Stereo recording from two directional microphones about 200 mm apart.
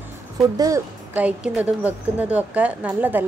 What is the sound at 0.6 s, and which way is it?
Speech, 15° right (ahead or behind).